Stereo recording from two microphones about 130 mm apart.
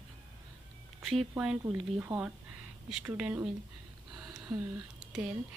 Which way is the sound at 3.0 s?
15° right (ahead or behind).